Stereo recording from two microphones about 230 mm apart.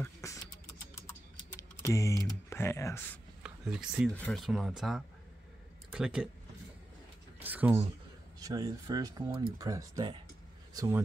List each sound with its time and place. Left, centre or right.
0.0 s beatboxing: centre
1.6 s typing: centre
2.5 s speech: centre
3.4 s speech: centre
7.4 s a sound: centre
8.4 s a man's voice: centre